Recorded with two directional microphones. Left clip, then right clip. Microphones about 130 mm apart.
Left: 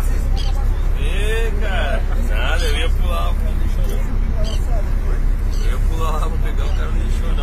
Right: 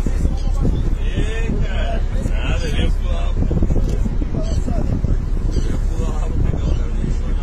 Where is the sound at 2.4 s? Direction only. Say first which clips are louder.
Left 4 dB; 35° left (ahead or behind).